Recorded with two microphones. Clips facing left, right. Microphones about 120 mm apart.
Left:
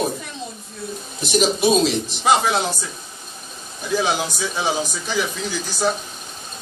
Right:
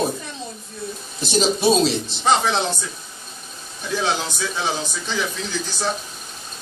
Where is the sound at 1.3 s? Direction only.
30° right (ahead or behind).